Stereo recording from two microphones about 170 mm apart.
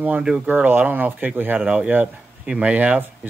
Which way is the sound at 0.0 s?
5° right (ahead or behind).